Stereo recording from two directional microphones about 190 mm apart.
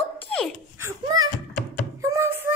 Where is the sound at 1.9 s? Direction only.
15° right (ahead or behind).